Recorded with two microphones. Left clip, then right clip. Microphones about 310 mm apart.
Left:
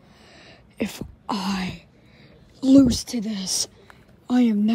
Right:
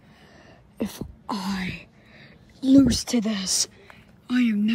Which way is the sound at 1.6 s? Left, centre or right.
Centre.